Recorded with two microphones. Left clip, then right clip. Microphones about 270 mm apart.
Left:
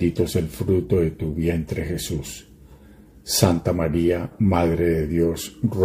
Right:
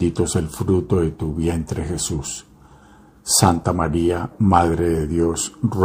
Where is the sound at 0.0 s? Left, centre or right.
Centre.